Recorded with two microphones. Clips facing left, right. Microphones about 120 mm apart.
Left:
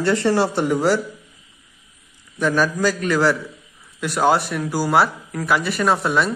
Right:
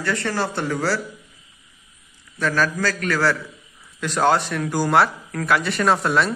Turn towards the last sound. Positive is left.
turn(degrees=0)  # may be behind; listen again after turning